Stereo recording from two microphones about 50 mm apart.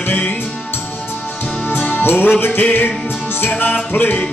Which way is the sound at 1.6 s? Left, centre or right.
Left.